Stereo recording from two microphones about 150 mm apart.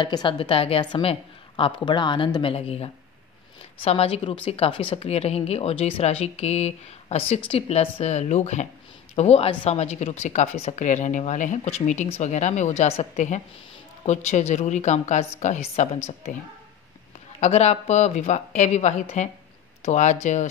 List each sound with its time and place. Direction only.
0.0 s a woman's voice: 30° left (ahead or behind)
17.4 s speech: 45° left (ahead or behind)